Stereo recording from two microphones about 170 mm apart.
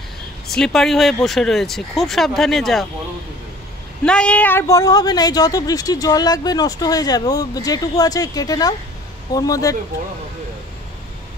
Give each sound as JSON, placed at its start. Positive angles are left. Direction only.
{"t": 0.5, "sound": "speech", "side_deg": 0}
{"t": 4.0, "sound": "a woman's voice", "side_deg": 5}